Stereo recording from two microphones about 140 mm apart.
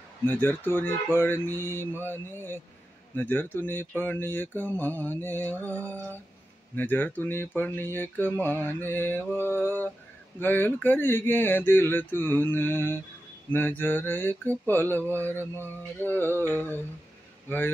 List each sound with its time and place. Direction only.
0.2 s speech: 15° left (ahead or behind)